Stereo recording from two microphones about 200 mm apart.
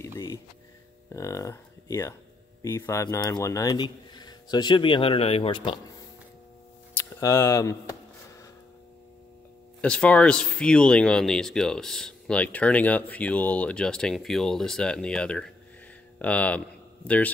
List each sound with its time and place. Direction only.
0.0 s music: 25° left (ahead or behind)
1.1 s speech: 15° left (ahead or behind)
6.9 s speech: 15° left (ahead or behind)
9.8 s speech: 5° left (ahead or behind)